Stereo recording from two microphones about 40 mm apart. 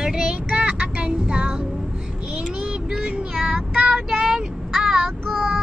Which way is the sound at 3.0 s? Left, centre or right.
Right.